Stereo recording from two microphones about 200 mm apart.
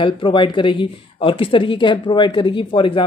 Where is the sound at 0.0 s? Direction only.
25° left (ahead or behind).